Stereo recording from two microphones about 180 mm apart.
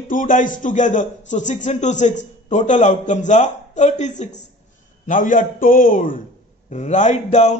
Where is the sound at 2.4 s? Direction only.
40° left (ahead or behind).